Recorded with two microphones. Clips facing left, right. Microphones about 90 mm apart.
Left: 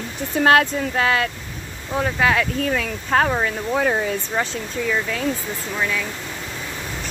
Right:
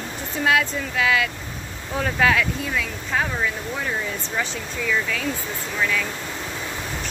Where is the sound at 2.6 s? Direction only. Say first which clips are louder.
Left 4 dB; 55° left (ahead or behind).